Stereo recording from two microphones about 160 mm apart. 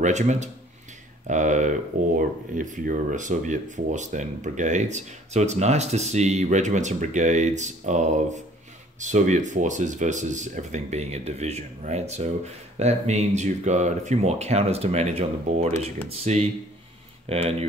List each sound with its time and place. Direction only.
0.0 s speech: 50° right (ahead or behind)